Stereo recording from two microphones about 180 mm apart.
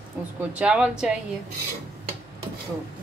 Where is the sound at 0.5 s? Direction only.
5° right (ahead or behind).